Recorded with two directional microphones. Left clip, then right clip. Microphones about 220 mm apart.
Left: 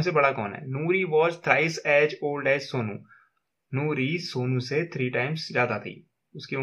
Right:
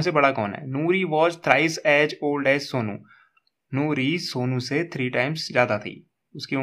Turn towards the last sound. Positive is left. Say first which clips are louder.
# right 4 dB
turn(degrees=-40)  # may be behind; listen again after turning